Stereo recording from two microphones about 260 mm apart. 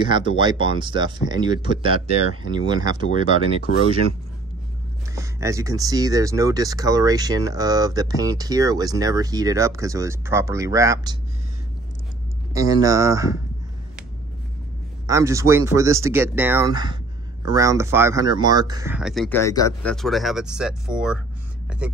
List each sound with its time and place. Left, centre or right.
0.0 s speech: centre
3.3 s speech: left
5.1 s speech: centre
12.5 s speech: centre
15.0 s speech: centre
21.6 s a sound: centre